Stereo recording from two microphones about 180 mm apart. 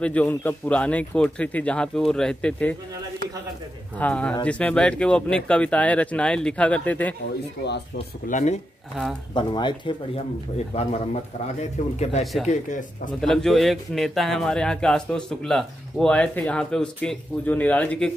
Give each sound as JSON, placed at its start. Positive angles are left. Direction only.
{"t": 0.0, "sound": "speech", "side_deg": 5}
{"t": 4.0, "sound": "speech", "side_deg": 5}
{"t": 8.3, "sound": "speech", "side_deg": 45}
{"t": 9.3, "sound": "a man's voice", "side_deg": 25}
{"t": 13.2, "sound": "a man's voice", "side_deg": 0}